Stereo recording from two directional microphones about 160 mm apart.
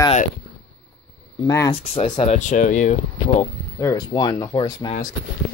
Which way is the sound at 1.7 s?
35° left (ahead or behind).